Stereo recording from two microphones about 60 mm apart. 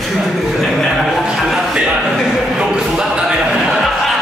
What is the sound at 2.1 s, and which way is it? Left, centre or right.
Speech, centre.